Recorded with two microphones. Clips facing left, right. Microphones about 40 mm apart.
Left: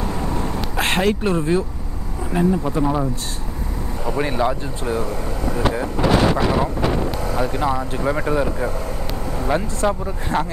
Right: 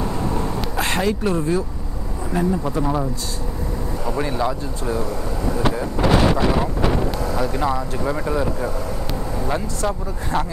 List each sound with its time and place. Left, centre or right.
0.1 s a sound: centre
0.7 s a sound: left
1.2 s speech: left
2.3 s speech: centre
4.2 s speech: left
7.2 s speech: centre
7.9 s speech: left
9.8 s speech: left